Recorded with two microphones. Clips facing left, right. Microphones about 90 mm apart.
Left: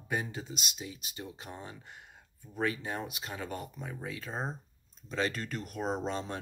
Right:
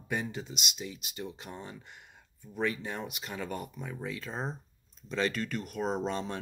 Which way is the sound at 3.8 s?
15° left (ahead or behind).